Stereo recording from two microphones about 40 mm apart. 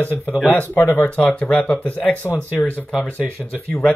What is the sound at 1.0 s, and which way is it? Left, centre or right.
Speech, left.